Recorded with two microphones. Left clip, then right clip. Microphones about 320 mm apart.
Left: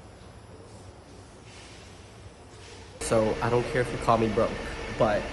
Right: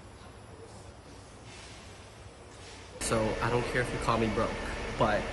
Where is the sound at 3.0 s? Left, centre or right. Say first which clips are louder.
Left 5 dB; centre.